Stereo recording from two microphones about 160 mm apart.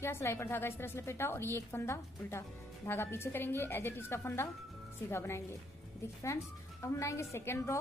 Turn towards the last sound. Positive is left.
turn(degrees=15)  # may be behind; listen again after turning